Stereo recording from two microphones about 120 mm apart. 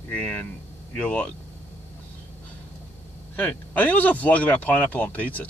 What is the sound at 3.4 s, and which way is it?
Speech, 15° left (ahead or behind).